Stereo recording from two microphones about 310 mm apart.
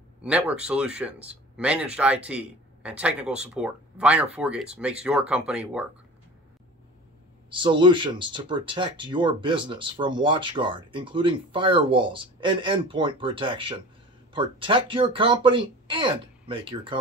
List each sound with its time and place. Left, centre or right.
0.2 s speech: centre
7.4 s speech: centre